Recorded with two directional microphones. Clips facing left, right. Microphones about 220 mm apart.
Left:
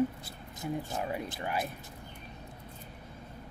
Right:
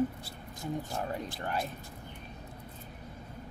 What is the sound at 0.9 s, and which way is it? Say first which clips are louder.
Speech: left 1 dB; 10° left (ahead or behind).